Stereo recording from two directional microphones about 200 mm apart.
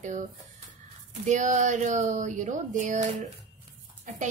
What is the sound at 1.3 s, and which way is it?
Speech, 40° right (ahead or behind).